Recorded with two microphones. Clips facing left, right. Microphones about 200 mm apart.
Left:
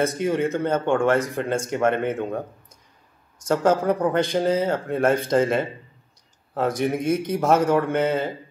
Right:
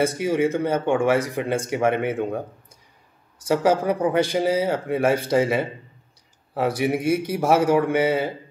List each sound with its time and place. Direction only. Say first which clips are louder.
0.0 s a man's voice: right 1 dB; 10° right (ahead or behind)
3.4 s a man's voice: even; 10° right (ahead or behind)
6.8 s a man's voice: right 2 dB; 10° right (ahead or behind)